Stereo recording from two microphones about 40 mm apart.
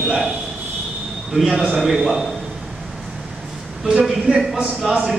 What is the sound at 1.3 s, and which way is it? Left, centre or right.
Speech, centre.